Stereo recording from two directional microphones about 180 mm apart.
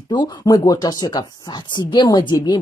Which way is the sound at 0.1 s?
25° left (ahead or behind).